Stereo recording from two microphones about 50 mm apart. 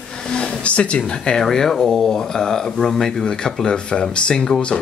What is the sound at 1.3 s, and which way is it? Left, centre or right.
Speech, centre.